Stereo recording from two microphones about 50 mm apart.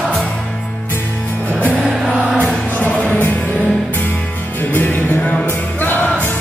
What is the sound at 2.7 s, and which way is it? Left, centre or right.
Music, left.